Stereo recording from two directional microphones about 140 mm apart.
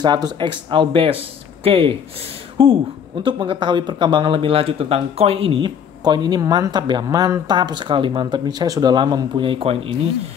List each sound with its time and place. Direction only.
0.0 s speech: 30° right (ahead or behind)
6.0 s speech: 30° right (ahead or behind)